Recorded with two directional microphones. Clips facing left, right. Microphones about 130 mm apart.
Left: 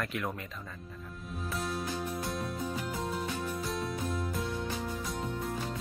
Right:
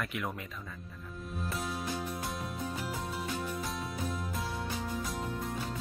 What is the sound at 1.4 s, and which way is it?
Music, centre (ahead or behind).